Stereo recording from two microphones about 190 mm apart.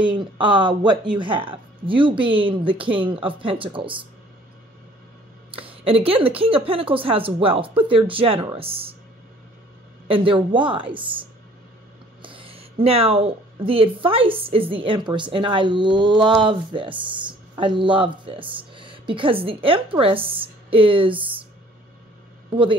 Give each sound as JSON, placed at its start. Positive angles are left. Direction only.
{"t": 0.1, "sound": "speech", "side_deg": -25}
{"t": 5.6, "sound": "speech", "side_deg": -30}
{"t": 10.0, "sound": "speech", "side_deg": -30}
{"t": 12.2, "sound": "a woman's voice", "side_deg": -25}
{"t": 22.5, "sound": "a man's voice", "side_deg": -25}